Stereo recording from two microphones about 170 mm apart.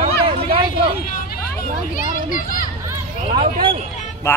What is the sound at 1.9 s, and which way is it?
Speech, 55° left (ahead or behind).